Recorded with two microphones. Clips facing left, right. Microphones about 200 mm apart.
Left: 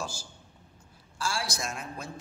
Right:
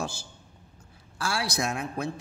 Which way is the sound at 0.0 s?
60° right (ahead or behind).